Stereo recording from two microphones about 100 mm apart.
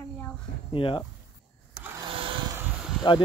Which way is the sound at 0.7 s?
60° left (ahead or behind).